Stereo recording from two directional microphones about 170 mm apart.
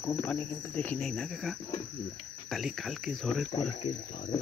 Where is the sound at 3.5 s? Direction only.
35° left (ahead or behind).